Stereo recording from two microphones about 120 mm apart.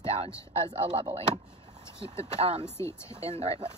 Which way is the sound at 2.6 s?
20° left (ahead or behind).